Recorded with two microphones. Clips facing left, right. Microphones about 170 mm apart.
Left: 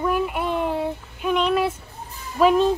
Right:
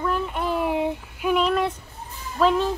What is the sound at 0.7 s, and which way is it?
Child singing, 15° right (ahead or behind).